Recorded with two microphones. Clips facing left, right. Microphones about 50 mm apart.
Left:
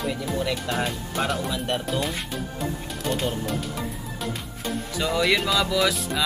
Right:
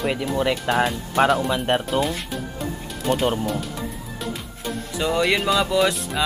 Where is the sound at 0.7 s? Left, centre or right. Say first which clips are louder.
Right 9 dB; right.